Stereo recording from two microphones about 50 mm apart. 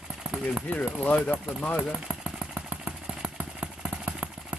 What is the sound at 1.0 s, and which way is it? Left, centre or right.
Speech, left.